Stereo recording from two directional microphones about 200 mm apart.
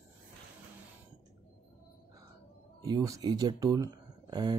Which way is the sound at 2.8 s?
20° right (ahead or behind).